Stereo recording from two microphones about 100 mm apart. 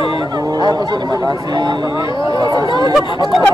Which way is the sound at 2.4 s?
45° right (ahead or behind).